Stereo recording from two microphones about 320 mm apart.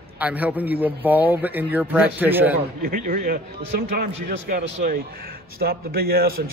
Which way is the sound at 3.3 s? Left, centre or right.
Right.